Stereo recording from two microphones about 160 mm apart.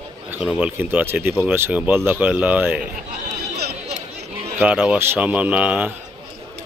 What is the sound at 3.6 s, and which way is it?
Chatter, 90° right.